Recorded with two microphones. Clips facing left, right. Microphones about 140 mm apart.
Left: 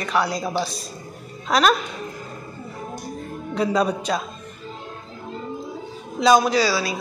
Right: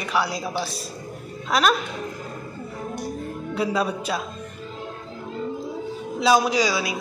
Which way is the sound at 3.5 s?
5° right (ahead or behind).